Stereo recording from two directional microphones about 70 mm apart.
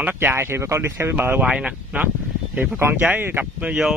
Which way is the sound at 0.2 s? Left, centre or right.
Right.